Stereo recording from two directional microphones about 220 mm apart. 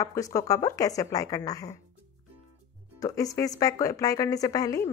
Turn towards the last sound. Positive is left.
turn(degrees=15)  # may be behind; listen again after turning